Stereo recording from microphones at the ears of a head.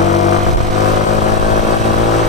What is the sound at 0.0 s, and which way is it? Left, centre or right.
Vehicle, left.